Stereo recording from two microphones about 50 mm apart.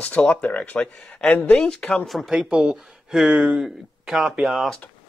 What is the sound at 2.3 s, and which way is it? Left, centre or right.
Speech, right.